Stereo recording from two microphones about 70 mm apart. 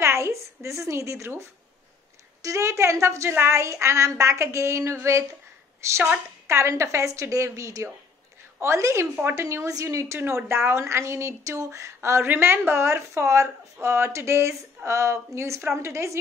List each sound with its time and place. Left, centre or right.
0.0 s a woman's voice: right
2.4 s a woman's voice: right